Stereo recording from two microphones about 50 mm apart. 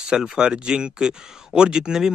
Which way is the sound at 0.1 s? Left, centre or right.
Centre.